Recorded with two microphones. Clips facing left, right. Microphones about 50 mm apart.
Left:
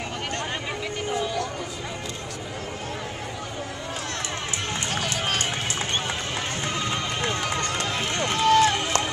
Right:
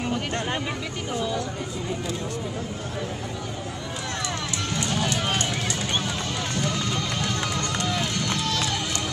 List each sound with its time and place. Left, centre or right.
6.6 s run: left